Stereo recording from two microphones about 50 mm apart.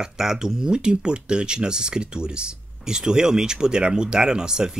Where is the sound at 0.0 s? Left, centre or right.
Centre.